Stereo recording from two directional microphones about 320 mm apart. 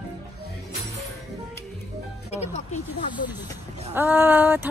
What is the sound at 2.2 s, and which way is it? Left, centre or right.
Speech, left.